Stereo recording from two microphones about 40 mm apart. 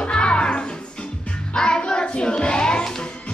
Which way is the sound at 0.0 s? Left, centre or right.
Left.